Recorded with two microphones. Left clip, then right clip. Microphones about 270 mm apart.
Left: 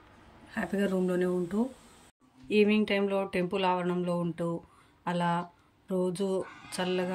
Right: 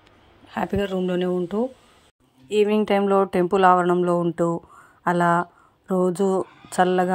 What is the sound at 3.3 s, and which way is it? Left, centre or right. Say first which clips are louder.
Speech: right 12 dB; centre.